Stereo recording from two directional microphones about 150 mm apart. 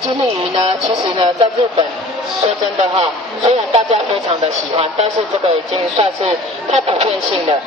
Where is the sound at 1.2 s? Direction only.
35° right (ahead or behind).